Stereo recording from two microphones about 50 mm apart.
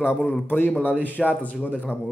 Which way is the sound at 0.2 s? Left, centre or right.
Left.